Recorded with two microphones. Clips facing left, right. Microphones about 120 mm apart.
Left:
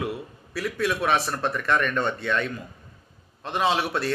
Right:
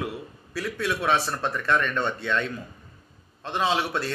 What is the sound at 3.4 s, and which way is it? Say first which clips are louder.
Speech: left 1 dB; 15° left (ahead or behind).